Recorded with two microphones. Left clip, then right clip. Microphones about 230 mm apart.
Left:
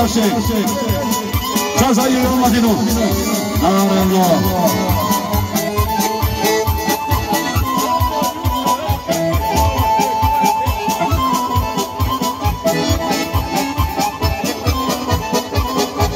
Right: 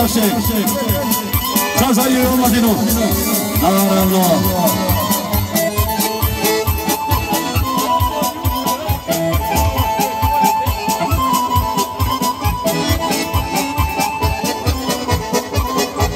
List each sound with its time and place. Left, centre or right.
0.0 s speech: right
7.7 s music: right
12.6 s music: right